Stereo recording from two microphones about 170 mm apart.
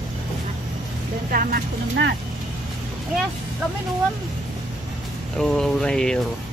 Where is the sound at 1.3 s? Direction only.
60° right (ahead or behind).